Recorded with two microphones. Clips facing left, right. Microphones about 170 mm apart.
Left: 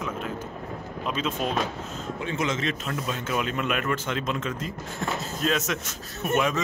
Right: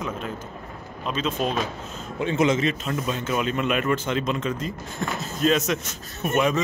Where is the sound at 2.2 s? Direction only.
20° right (ahead or behind).